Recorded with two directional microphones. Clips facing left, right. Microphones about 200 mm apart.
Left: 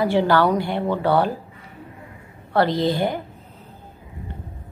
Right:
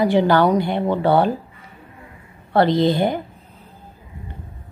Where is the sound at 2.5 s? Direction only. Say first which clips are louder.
Right 3 dB; 20° right (ahead or behind).